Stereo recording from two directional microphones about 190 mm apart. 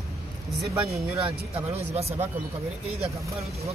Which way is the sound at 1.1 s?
30° right (ahead or behind).